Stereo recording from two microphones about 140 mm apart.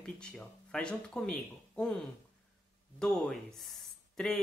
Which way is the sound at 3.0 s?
5° left (ahead or behind).